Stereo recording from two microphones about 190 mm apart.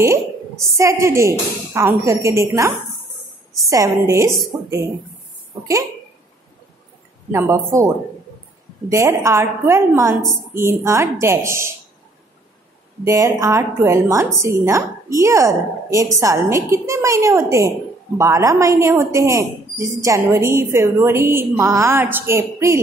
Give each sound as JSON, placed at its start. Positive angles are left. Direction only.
{"t": 0.0, "sound": "a sound", "side_deg": -15}
{"t": 0.7, "sound": "a woman's voice", "side_deg": -15}
{"t": 7.2, "sound": "a woman's voice", "side_deg": -15}
{"t": 13.0, "sound": "a woman's voice", "side_deg": -15}